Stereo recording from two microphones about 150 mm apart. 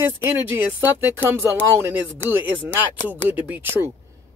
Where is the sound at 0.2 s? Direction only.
15° right (ahead or behind).